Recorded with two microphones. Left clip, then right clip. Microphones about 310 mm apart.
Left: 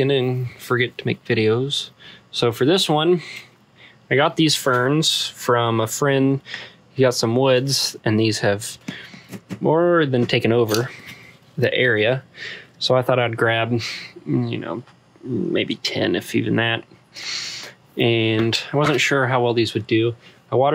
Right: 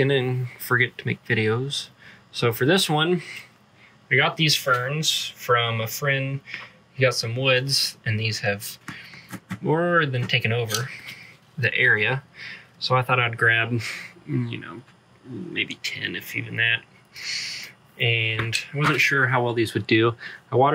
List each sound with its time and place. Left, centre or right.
0.0 s speech: centre